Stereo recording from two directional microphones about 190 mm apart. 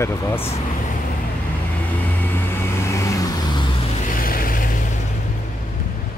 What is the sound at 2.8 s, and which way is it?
Vehicle, 15° left (ahead or behind).